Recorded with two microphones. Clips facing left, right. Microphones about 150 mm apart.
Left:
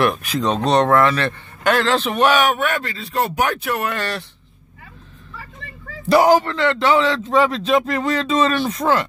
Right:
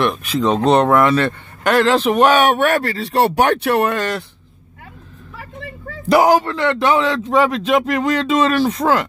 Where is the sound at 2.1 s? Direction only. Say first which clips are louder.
Right 2 dB; 35° right (ahead or behind).